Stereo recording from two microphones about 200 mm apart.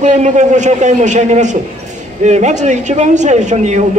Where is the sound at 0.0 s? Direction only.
35° right (ahead or behind).